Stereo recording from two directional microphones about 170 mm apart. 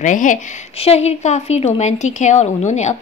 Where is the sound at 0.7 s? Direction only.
35° left (ahead or behind).